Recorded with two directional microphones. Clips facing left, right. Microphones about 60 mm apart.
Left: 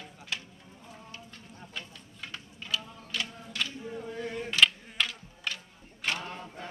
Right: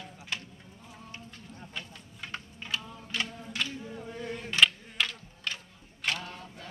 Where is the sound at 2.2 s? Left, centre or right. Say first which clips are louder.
Left 1 dB; right.